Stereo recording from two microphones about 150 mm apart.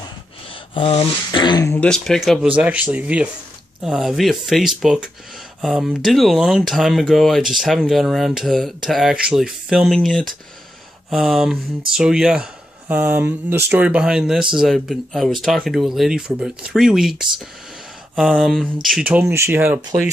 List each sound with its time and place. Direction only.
0.5 s speech: 40° left (ahead or behind)
1.7 s speech: 5° left (ahead or behind); by 19.8 s 15° right (ahead or behind)